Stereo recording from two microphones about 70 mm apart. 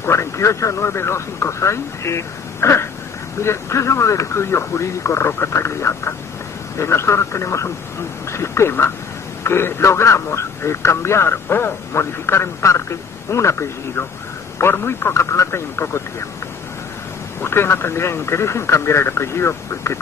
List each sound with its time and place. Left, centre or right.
0.0 s a man's voice: left
17.4 s a man's voice: left